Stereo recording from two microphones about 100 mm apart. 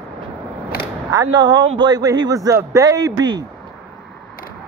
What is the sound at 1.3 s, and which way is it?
Speech, 45° right (ahead or behind).